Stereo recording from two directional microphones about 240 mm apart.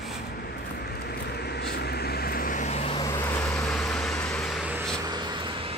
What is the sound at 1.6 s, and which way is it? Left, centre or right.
Vehicle, left.